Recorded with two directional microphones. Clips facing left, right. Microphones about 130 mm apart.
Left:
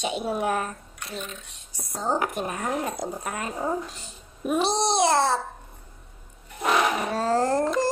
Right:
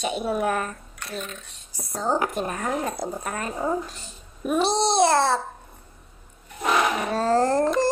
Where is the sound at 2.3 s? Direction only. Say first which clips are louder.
Right 1 dB; 10° left (ahead or behind).